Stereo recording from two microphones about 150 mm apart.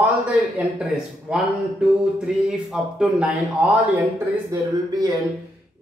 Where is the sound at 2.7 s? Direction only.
5° right (ahead or behind).